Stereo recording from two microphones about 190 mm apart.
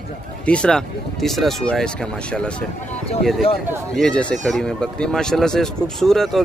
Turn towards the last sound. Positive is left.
turn(degrees=0)  # may be behind; listen again after turning